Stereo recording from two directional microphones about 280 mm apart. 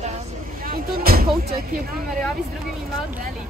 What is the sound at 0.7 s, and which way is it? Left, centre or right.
Speech, right.